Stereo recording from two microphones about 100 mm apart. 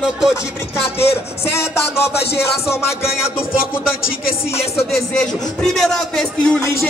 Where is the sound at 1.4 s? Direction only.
25° left (ahead or behind).